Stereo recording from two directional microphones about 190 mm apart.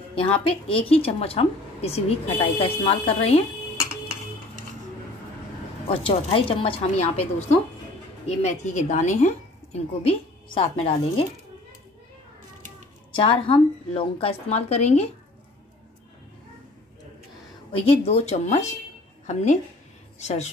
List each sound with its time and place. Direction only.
0.1 s a woman's voice: 30° left (ahead or behind)
5.9 s a woman's voice: 25° left (ahead or behind)
13.1 s a woman's voice: 30° left (ahead or behind)
17.7 s a woman's voice: 30° left (ahead or behind)